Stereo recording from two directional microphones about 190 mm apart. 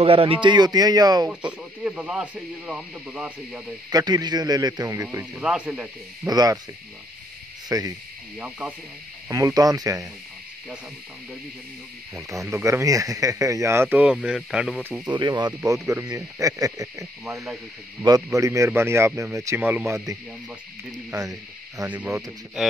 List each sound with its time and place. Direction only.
0.0 s a man's voice: 30° right (ahead or behind)
1.3 s speech: 5° right (ahead or behind)
3.9 s a man's voice: 20° right (ahead or behind)
5.0 s speech: 10° right (ahead or behind)
6.2 s a man's voice: 20° right (ahead or behind)
7.7 s speech: 15° right (ahead or behind)
9.3 s speech: 15° right (ahead or behind)
12.3 s speech: 15° right (ahead or behind)
15.0 s a man's voice: 20° right (ahead or behind)
18.0 s speech: 15° right (ahead or behind)